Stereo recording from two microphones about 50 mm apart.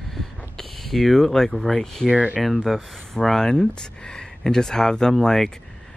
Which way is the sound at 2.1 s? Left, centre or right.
Right.